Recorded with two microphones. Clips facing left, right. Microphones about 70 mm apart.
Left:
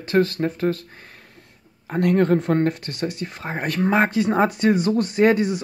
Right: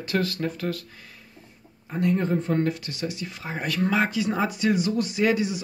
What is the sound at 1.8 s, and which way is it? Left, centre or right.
Speech, left.